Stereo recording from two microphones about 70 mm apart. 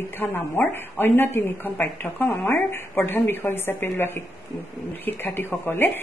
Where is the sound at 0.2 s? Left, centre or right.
Left.